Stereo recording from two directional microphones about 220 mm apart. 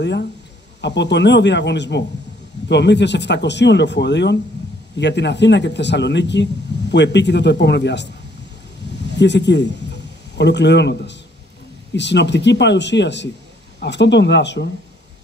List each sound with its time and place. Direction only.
0.0 s a man's voice: 50° left (ahead or behind)
9.1 s a man's voice: 50° left (ahead or behind)